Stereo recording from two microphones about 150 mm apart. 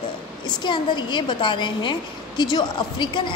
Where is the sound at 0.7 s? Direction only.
30° left (ahead or behind).